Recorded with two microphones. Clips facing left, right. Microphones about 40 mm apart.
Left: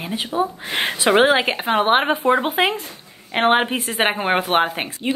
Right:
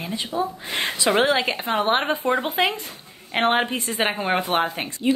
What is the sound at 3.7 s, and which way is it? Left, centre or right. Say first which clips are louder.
Speech: left 3 dB; left.